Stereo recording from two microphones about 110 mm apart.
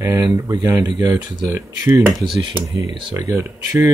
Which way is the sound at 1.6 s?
30° right (ahead or behind).